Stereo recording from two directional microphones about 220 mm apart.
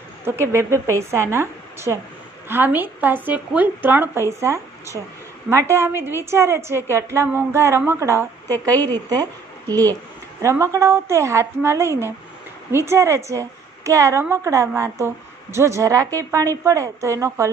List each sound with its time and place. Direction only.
0.2 s a woman's voice: 10° right (ahead or behind)